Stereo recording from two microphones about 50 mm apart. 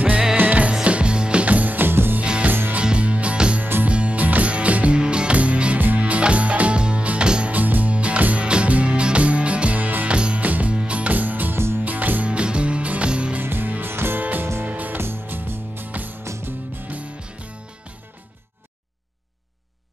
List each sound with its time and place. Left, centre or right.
0.4 s music: right
2.8 s music: right
7.5 s music: right
10.1 s music: centre; by 11.5 s right
11.5 s music: right
11.8 s music: right
12.3 s music: right
13.4 s music: right
14.7 s music: right
15.0 s music: right
15.9 s music: right